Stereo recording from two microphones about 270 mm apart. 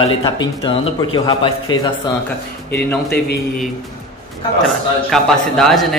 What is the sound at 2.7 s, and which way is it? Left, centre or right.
Speech, left.